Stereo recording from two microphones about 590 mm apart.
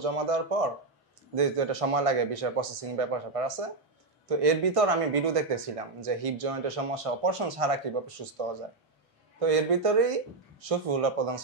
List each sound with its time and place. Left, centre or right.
0.0 s speech: right
9.4 s speech: right